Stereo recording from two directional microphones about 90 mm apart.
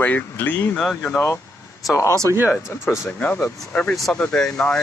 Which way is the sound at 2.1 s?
35° right (ahead or behind).